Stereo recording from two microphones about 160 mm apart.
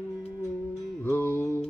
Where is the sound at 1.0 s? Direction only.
15° left (ahead or behind).